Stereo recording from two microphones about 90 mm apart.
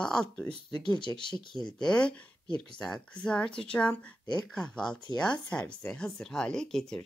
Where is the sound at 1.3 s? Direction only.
55° left (ahead or behind).